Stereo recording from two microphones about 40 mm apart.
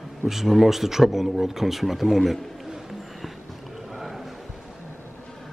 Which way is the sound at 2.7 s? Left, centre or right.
Centre.